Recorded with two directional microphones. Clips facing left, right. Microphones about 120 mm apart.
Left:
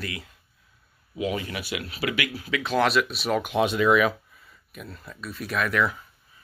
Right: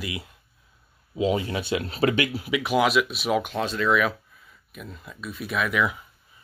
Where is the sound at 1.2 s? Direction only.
25° right (ahead or behind).